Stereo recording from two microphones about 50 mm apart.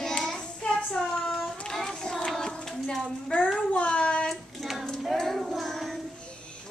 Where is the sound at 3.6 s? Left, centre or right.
Centre.